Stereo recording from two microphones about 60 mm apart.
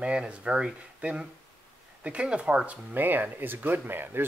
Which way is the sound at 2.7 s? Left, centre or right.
Right.